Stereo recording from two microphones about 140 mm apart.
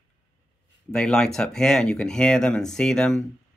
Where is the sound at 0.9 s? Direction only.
5° left (ahead or behind).